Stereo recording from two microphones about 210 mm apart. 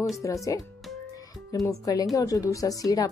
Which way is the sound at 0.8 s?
Centre (ahead or behind).